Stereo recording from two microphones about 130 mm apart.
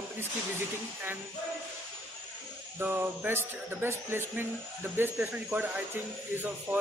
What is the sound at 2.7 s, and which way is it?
Speech, 15° right (ahead or behind).